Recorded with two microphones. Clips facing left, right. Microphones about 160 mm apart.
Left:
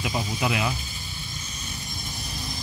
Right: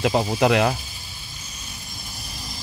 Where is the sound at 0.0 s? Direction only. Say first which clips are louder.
Right 8 dB; 60° right (ahead or behind).